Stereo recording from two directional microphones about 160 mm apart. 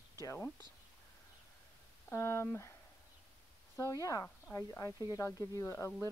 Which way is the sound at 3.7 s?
20° left (ahead or behind).